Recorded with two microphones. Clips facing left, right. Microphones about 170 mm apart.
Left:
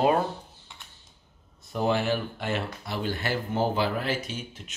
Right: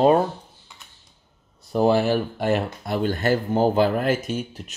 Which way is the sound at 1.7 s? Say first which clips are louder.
Right 7 dB; 35° right (ahead or behind).